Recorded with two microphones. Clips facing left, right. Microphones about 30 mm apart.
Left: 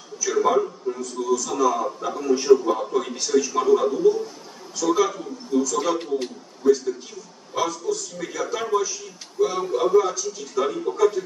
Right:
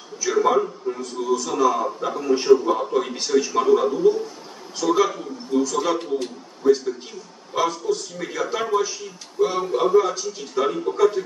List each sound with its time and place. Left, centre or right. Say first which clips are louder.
0.2 s a sound: right 1 dB; centre
0.9 s a man's voice: even; right
2.6 s a man's voice: right 2 dB; centre
3.2 s a man's voice: even; right
5.9 s speech: right 1 dB; centre
7.5 s a man's voice: right 2 dB; right